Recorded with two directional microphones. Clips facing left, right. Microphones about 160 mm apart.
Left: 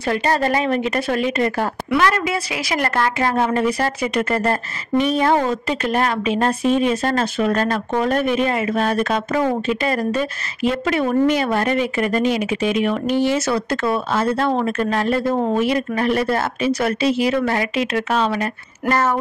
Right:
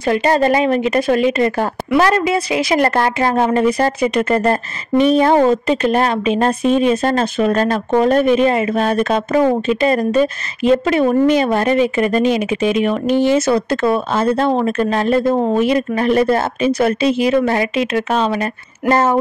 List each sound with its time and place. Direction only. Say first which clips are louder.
0.0 s speech: right 5 dB; 20° right (ahead or behind)